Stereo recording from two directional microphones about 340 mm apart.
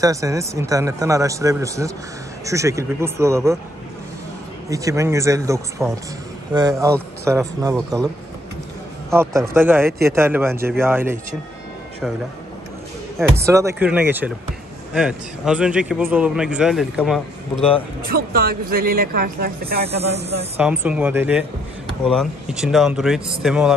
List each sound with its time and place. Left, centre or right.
0.0 s a man's voice: centre
4.6 s a man's voice: centre
9.1 s a man's voice: centre
13.4 s a man's voice: centre
17.6 s a man's voice: centre
18.0 s speech: right
20.5 s a man's voice: centre